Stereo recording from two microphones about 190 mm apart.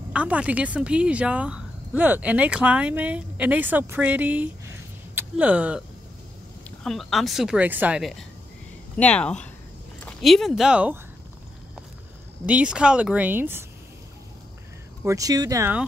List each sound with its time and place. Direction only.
0.1 s speech: 5° right (ahead or behind)
12.4 s speech: 5° right (ahead or behind)
15.0 s speech: 20° right (ahead or behind)